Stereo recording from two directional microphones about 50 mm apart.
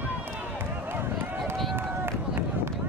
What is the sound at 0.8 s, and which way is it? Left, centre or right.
Run, right.